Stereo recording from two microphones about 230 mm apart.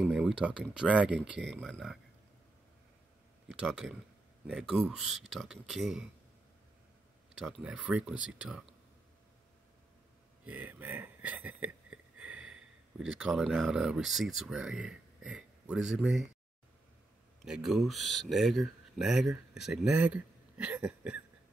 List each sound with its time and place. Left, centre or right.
0.0 s a sound: centre
0.4 s speech: centre
3.4 s speech: centre
7.4 s speech: centre
10.4 s speech: centre
17.5 s speech: centre